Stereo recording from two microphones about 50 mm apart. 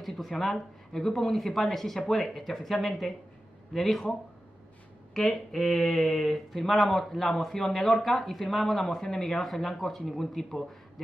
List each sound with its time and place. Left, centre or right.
0.0 s speech: centre
5.1 s speech: centre